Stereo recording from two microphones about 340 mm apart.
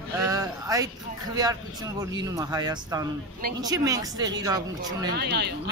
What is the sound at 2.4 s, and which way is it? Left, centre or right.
A woman's voice, centre.